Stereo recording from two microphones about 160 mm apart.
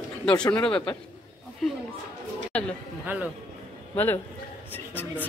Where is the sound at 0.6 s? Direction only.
5° left (ahead or behind).